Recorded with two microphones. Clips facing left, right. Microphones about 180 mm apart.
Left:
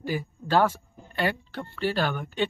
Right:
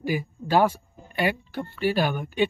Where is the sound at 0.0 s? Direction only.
15° right (ahead or behind).